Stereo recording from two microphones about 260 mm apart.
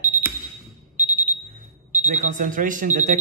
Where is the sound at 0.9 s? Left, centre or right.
Centre.